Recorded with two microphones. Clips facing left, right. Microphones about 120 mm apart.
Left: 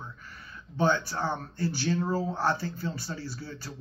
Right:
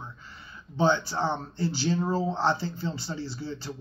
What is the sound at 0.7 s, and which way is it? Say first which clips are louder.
Speech: right 2 dB; 25° right (ahead or behind).